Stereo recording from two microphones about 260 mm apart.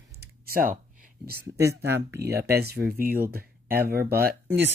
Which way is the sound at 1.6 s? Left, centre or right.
Centre.